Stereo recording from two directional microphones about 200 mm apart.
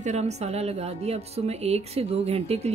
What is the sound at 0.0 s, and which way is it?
A woman's voice, 35° right (ahead or behind).